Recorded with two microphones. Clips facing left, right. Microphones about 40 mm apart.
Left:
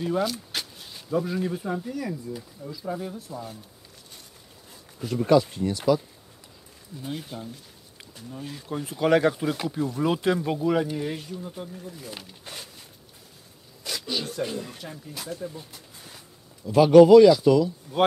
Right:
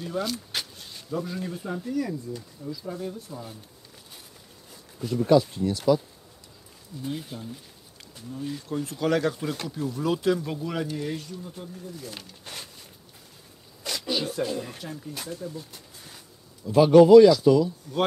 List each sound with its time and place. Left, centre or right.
0.2 s speech: centre
3.2 s speech: centre
5.5 s speech: centre
7.0 s speech: centre
8.5 s speech: centre
13.8 s zipper: centre
14.6 s speech: centre
15.7 s a sound: centre
16.6 s speech: centre